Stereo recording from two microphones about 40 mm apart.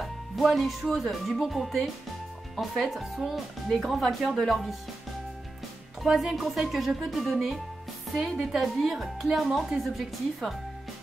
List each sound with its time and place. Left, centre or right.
0.0 s music: centre
0.8 s speech: centre
6.0 s speech: centre